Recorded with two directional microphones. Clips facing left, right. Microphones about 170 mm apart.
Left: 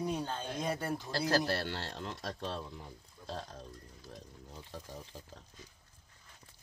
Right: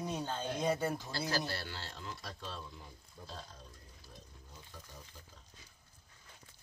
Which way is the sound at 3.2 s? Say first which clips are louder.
Left 5 dB; 50° right (ahead or behind).